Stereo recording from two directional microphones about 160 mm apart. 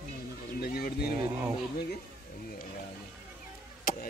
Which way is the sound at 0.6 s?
70° left (ahead or behind).